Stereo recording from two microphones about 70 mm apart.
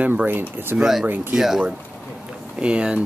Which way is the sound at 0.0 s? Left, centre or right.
Right.